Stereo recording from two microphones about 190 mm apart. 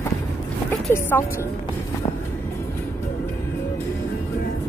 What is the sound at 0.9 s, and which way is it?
Speech, 10° left (ahead or behind).